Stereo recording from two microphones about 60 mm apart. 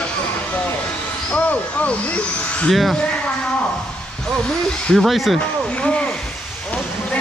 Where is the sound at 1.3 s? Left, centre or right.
Left.